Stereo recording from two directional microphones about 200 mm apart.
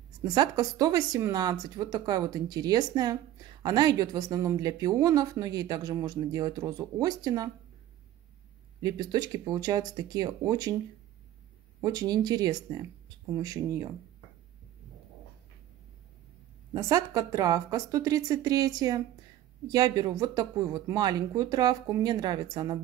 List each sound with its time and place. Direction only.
0.3 s a woman's voice: 20° right (ahead or behind)
8.9 s a woman's voice: 20° right (ahead or behind)
11.8 s a woman's voice: 20° right (ahead or behind)
16.7 s a woman's voice: 15° right (ahead or behind)